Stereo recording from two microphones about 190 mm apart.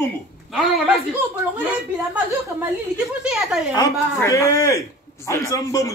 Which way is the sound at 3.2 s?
5° right (ahead or behind).